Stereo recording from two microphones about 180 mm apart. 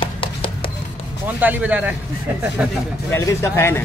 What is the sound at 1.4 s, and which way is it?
A man's voice, 10° right (ahead or behind).